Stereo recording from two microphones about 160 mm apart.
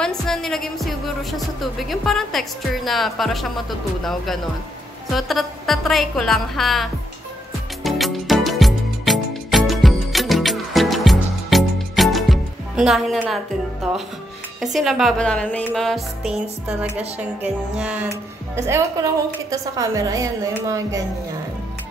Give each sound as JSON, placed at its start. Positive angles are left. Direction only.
{"t": 0.0, "sound": "music", "side_deg": 5}
{"t": 1.6, "sound": "speech", "side_deg": 0}
{"t": 7.8, "sound": "music", "side_deg": 0}
{"t": 14.6, "sound": "speech", "side_deg": 0}
{"t": 17.2, "sound": "music", "side_deg": -10}
{"t": 18.6, "sound": "music", "side_deg": -15}
{"t": 19.5, "sound": "a woman's voice", "side_deg": -20}